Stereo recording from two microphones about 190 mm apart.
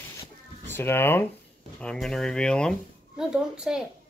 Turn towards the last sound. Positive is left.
turn(degrees=-5)  # may be behind; listen again after turning